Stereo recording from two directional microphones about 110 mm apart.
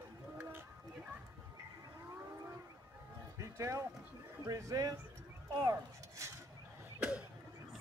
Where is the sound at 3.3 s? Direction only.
30° right (ahead or behind).